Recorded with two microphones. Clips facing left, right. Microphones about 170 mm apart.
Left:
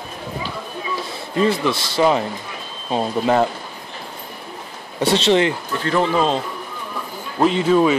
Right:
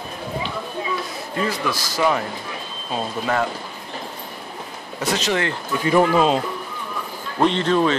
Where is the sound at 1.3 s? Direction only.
25° left (ahead or behind).